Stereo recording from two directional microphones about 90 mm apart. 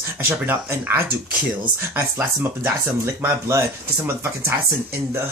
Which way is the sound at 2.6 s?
25° right (ahead or behind).